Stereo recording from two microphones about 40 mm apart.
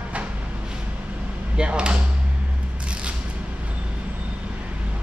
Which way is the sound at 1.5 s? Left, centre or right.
Right.